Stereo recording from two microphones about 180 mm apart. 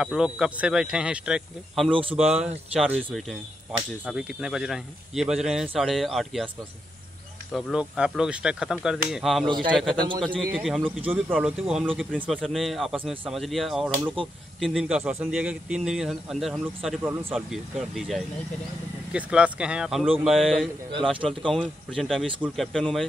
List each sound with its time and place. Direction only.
0.0 s speech: 5° right (ahead or behind)
1.9 s a man's voice: 30° right (ahead or behind)
2.1 s speech: 5° right (ahead or behind)
7.5 s speech: 5° right (ahead or behind)
9.5 s a man's voice: 25° right (ahead or behind)
10.2 s speech: 5° left (ahead or behind)